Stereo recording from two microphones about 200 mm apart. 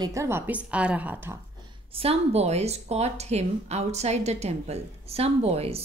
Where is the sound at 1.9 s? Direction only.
30° right (ahead or behind).